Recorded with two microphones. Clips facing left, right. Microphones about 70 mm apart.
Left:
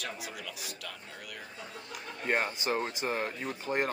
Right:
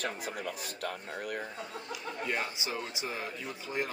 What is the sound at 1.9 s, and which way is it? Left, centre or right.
Speech, left.